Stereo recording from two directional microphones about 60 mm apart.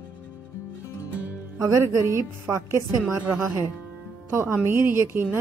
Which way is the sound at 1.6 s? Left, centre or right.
Right.